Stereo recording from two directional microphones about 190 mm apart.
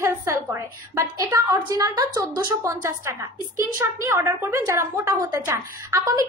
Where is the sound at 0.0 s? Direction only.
15° right (ahead or behind).